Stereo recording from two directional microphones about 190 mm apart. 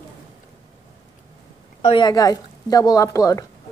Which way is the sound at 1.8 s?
25° left (ahead or behind).